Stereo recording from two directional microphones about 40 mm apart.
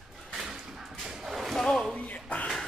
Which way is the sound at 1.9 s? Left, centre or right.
Left.